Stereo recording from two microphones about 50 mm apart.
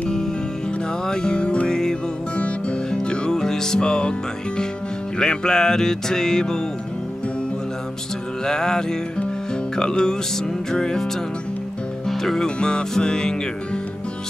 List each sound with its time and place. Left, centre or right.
1.0 s music: centre
5.2 s music: centre
8.5 s music: centre
12.1 s music: centre